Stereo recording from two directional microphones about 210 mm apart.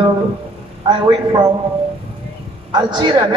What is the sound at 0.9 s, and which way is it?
Speech, 20° right (ahead or behind).